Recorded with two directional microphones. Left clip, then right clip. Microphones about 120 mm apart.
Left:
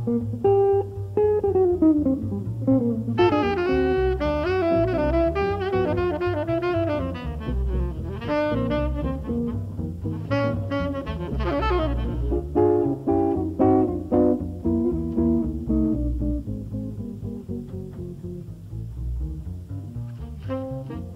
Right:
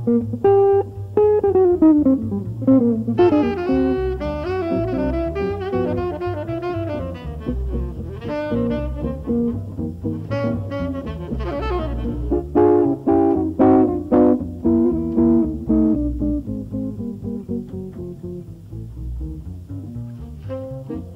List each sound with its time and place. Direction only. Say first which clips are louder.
0.0 s music: right 5 dB; 35° right (ahead or behind)
16.2 s music: right 6 dB; 50° right (ahead or behind)
20.4 s brass instrument: right 1 dB; 35° right (ahead or behind)